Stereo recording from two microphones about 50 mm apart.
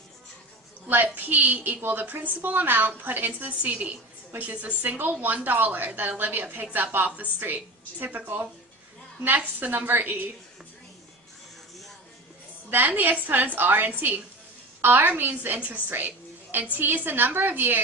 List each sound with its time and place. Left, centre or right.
0.8 s a woman's voice: right
4.8 s a woman's voice: right
12.6 s a woman's voice: right